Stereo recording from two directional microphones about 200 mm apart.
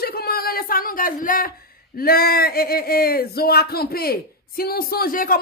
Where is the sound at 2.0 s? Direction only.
50° left (ahead or behind).